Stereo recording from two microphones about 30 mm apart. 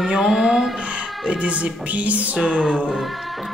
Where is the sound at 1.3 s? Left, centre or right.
Right.